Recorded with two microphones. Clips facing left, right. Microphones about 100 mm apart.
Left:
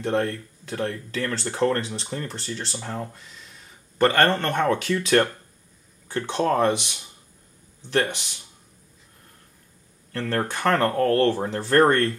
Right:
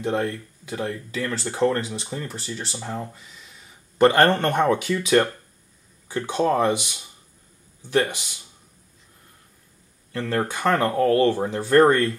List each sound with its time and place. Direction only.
0.0 s speech: 5° right (ahead or behind)
4.0 s speech: 15° right (ahead or behind)
10.1 s speech: 5° right (ahead or behind)